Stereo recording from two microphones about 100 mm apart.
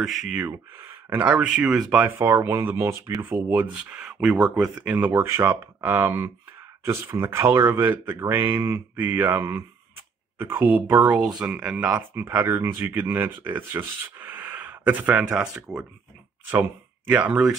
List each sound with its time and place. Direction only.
0.0 s speech: 5° right (ahead or behind)
1.1 s speech: 15° right (ahead or behind)
10.4 s speech: 20° right (ahead or behind)
12.1 s speech: 20° right (ahead or behind); by 15.8 s 5° right (ahead or behind)
17.1 s speech: 10° right (ahead or behind)